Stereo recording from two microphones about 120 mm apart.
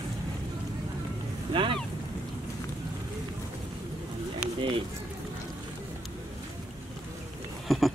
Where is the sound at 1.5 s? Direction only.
45° right (ahead or behind).